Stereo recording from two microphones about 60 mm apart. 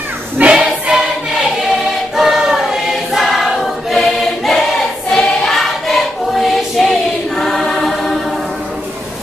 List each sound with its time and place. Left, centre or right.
0.4 s choir: centre
2.1 s choir: centre